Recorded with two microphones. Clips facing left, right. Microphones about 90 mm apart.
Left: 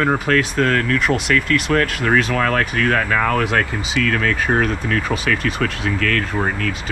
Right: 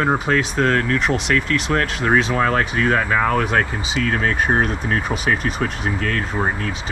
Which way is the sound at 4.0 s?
90° left.